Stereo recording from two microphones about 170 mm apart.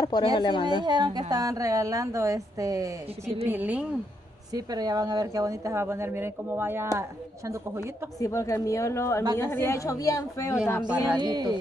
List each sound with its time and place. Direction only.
0.0 s speech: 25° left (ahead or behind)
0.7 s a woman's voice: 25° right (ahead or behind); by 3.8 s 10° right (ahead or behind)
4.6 s speech: 20° right (ahead or behind)
8.2 s a woman's voice: 20° left (ahead or behind)
11.1 s a woman's voice: 25° right (ahead or behind)